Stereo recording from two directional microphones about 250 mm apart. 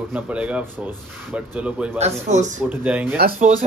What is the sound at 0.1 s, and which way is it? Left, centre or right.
Speech, centre.